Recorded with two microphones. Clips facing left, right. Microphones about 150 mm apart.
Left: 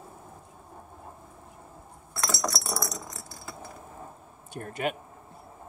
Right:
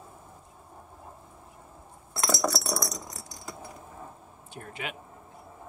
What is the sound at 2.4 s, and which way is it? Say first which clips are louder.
Keys jangling: right 3 dB; 5° right (ahead or behind).